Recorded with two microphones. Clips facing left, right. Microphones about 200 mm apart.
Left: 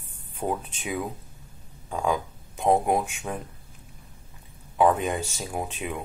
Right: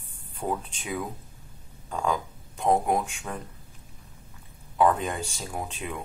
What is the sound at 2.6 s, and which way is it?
Speech, 10° left (ahead or behind).